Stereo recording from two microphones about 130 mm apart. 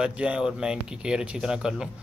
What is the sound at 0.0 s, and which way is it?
Speech, 10° right (ahead or behind).